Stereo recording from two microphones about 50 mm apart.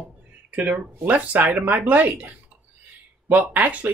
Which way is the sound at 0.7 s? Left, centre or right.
Right.